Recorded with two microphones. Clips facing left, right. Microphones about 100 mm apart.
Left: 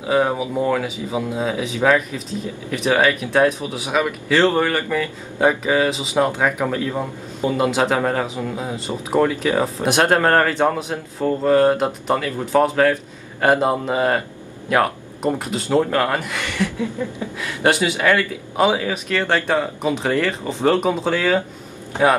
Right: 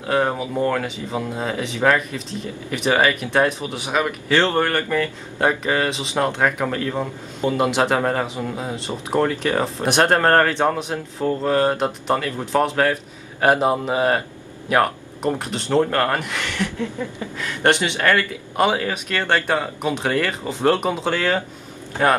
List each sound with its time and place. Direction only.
0.0 s speech: 5° left (ahead or behind)
15.3 s speech: 5° left (ahead or behind)
21.9 s a man's voice: 20° left (ahead or behind)